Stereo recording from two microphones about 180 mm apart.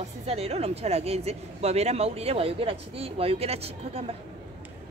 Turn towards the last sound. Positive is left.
turn(degrees=-35)  # may be behind; listen again after turning